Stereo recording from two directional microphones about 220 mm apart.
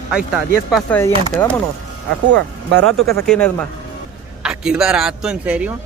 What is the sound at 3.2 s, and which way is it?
A man's voice, 5° left (ahead or behind).